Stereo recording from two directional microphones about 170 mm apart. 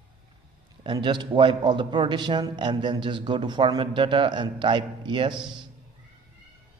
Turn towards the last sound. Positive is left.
turn(degrees=-25)  # may be behind; listen again after turning